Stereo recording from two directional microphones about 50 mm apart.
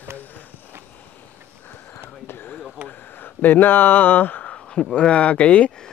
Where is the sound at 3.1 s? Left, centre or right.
Left.